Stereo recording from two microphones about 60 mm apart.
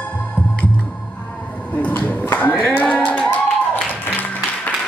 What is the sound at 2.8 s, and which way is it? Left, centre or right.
Clapping, left.